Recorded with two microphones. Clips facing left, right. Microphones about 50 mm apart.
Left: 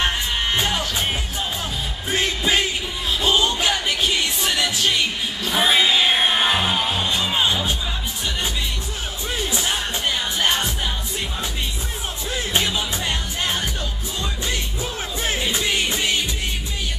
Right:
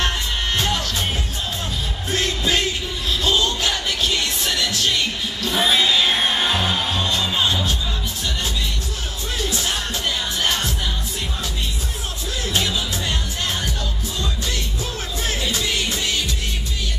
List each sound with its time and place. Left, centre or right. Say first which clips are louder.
0.6 s music: even; centre
2.0 s music: left 1 dB; centre
9.4 s music: even; centre
12.5 s music: even; left